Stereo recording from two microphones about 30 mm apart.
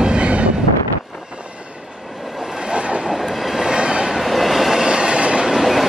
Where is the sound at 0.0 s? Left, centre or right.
Right.